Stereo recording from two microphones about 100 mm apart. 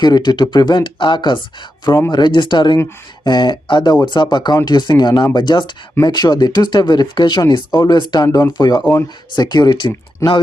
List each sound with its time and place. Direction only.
0.0 s speech: 45° left (ahead or behind)